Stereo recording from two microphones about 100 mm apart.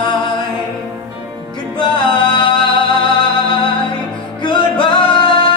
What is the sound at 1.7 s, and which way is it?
Music, 50° left (ahead or behind).